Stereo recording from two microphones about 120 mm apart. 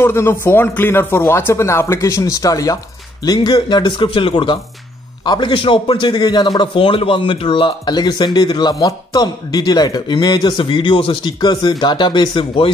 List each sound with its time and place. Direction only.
0.0 s a man's voice: 20° left (ahead or behind); by 12.6 s 40° left (ahead or behind)